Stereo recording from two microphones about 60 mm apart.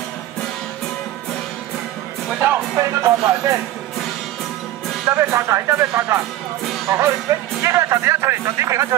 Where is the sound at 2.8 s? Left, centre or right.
Right.